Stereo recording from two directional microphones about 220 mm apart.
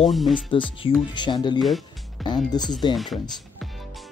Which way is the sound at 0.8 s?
25° left (ahead or behind).